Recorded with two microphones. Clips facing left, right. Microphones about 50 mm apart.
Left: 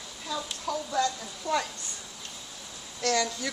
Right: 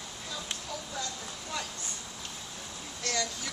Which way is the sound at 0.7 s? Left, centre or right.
Left.